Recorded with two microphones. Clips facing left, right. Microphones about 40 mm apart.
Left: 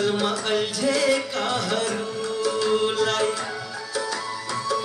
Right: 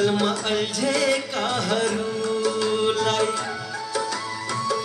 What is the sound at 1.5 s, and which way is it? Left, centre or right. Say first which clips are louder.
Music: right 3 dB; centre.